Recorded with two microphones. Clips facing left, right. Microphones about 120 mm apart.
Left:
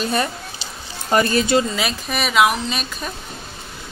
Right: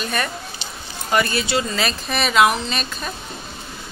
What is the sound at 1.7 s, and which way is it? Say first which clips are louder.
Speech: even; 10° left (ahead or behind).